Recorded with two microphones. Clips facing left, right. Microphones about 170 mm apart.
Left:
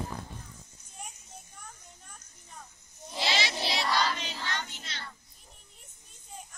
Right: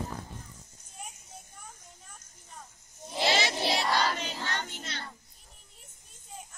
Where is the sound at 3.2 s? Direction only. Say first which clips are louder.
Right 4 dB; 50° right (ahead or behind).